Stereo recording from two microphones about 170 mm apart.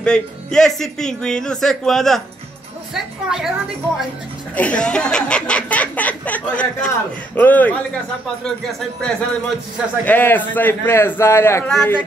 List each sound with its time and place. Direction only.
0.0 s speech: 5° left (ahead or behind)
4.6 s speech: 5° left (ahead or behind)